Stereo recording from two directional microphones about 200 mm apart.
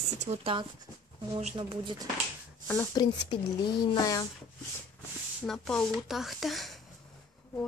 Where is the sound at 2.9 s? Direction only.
20° left (ahead or behind).